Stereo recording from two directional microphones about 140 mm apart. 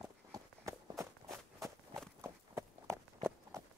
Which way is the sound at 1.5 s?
20° right (ahead or behind).